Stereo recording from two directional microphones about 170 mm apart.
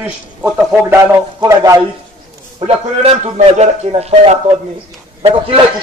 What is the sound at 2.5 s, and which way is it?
A man's voice, 35° right (ahead or behind).